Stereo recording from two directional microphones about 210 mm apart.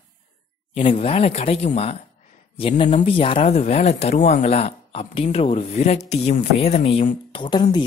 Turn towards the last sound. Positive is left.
turn(degrees=20)  # may be behind; listen again after turning